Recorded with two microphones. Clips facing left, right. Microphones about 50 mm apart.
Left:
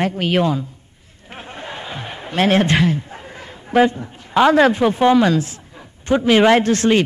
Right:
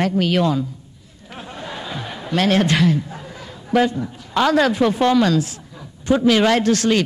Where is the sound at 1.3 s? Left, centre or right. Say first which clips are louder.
Even; left.